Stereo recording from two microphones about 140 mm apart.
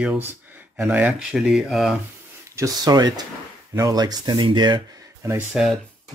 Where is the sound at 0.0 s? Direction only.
10° right (ahead or behind).